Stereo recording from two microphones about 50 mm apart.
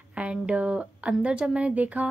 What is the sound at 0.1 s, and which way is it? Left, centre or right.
A woman's voice, right.